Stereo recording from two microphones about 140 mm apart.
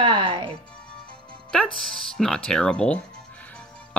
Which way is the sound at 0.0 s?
35° right (ahead or behind).